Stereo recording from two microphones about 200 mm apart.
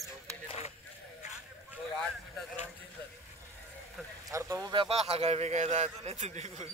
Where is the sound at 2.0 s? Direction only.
5° left (ahead or behind).